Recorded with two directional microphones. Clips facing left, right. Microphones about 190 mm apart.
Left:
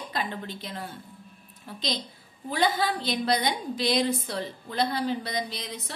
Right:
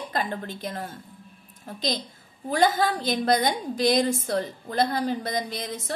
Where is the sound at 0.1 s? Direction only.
45° right (ahead or behind).